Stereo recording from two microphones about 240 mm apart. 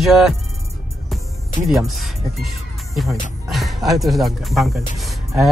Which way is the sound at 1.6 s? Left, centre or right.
Left.